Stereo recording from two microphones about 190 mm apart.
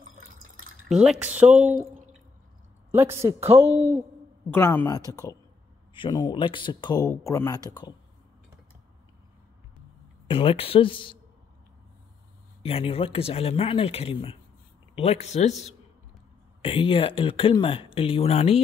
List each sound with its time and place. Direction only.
0.8 s speech: centre (ahead or behind)
2.9 s speech: 10° right (ahead or behind)
3.4 s speech: 30° right (ahead or behind)
4.6 s speech: 10° left (ahead or behind)
10.2 s speech: 30° left (ahead or behind)
12.6 s speech: 30° left (ahead or behind)
16.6 s speech: 30° left (ahead or behind)